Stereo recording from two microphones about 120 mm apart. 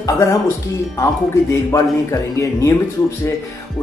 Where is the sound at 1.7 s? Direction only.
25° left (ahead or behind).